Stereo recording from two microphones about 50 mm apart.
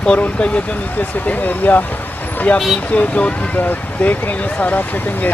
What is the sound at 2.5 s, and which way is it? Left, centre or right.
Speech, left.